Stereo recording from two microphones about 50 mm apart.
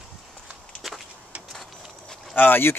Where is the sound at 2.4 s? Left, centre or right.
Left.